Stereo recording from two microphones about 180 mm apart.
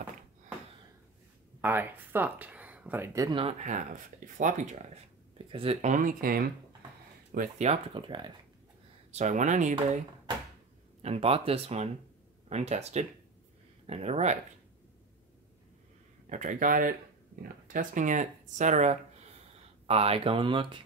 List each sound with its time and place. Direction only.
1.6 s speech: 10° right (ahead or behind); by 3.5 s 25° right (ahead or behind)
3.6 s speech: 45° right (ahead or behind)
5.4 s speech: 30° right (ahead or behind); by 6.5 s 55° right (ahead or behind)
7.3 s speech: 45° right (ahead or behind); by 8.3 s 25° right (ahead or behind)
9.1 s speech: 40° right (ahead or behind)
11.0 s speech: 35° right (ahead or behind)
16.3 s speech: 45° right (ahead or behind); by 20.8 s 25° right (ahead or behind)